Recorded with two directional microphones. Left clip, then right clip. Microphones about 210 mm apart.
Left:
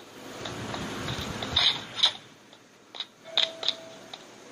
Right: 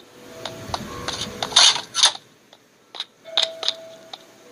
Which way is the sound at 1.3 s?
35° right (ahead or behind).